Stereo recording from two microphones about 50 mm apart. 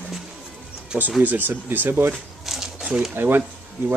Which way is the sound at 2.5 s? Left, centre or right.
Centre.